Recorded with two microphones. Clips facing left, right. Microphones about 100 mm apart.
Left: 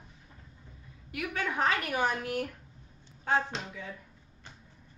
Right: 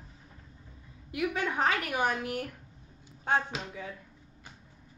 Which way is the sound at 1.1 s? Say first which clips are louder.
Right 3 dB; 20° right (ahead or behind).